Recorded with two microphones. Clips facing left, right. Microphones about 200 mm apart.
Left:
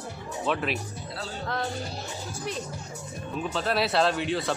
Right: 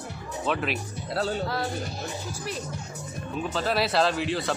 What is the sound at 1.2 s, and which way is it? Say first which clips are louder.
Music: right 11 dB; 65° right (ahead or behind).